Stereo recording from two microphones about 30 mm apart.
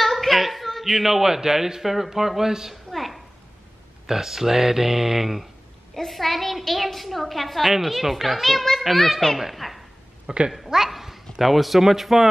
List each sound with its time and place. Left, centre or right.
0.0 s speech: centre
2.7 s a sound: centre
4.1 s speech: centre
6.0 s a child's voice: centre
10.3 s speech: right
10.9 s a child's voice: centre